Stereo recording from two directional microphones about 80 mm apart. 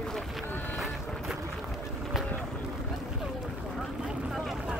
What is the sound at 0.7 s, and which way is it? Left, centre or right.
Boat, centre.